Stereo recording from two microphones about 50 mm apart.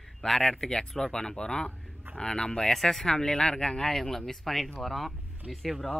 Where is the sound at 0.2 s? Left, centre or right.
Centre.